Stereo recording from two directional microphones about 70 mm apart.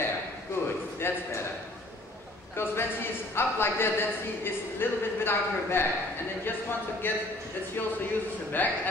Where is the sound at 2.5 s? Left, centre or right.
Left.